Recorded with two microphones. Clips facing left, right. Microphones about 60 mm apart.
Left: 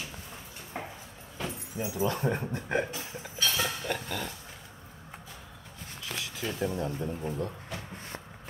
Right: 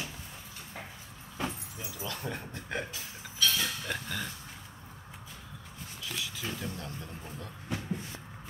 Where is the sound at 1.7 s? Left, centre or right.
Left.